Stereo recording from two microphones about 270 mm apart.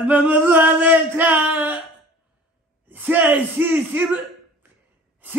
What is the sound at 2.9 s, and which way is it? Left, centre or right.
Speech, centre.